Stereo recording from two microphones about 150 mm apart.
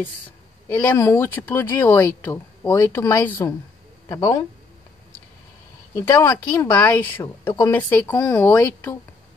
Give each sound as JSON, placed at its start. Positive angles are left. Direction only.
{"t": 0.7, "sound": "speech", "side_deg": 15}
{"t": 5.9, "sound": "speech", "side_deg": 15}
{"t": 7.2, "sound": "a woman's voice", "side_deg": 30}
{"t": 7.7, "sound": "speech", "side_deg": 10}